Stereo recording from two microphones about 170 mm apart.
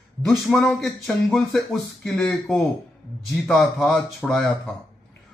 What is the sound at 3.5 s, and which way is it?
Speech, 15° left (ahead or behind).